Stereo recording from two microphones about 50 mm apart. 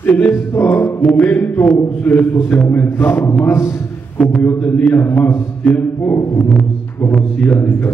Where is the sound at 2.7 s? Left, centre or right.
Left.